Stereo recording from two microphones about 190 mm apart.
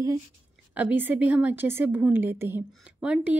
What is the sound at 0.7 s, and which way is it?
A woman's voice, 10° right (ahead or behind).